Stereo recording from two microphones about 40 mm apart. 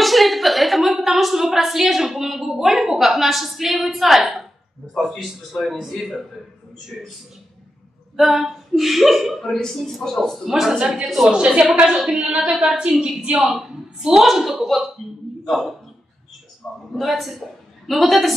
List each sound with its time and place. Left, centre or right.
0.0 s a woman's voice: centre
8.2 s speech: centre
9.4 s speech: centre
10.4 s a woman's voice: centre
10.7 s a woman's voice: right; by 15.7 s centre
16.9 s a woman's voice: centre